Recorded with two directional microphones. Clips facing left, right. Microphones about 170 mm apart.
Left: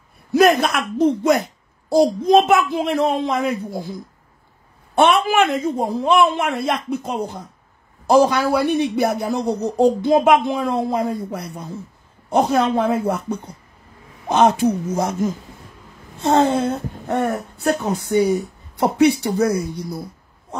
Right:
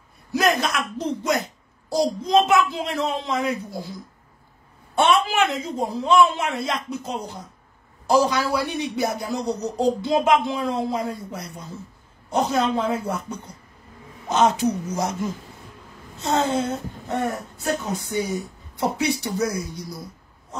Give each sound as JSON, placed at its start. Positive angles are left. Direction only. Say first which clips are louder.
{"t": 0.3, "sound": "a woman's voice", "louder": "left 7 dB", "side_deg": 55}
{"t": 4.9, "sound": "a woman's voice", "louder": "left 4 dB", "side_deg": 60}